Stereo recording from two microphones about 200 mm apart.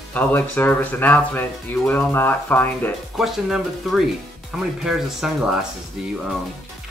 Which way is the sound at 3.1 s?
Centre (ahead or behind).